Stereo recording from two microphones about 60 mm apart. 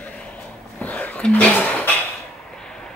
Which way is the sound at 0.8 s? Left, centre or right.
Left.